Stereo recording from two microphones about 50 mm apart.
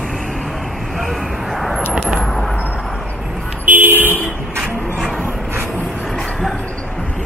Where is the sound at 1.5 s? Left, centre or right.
Centre.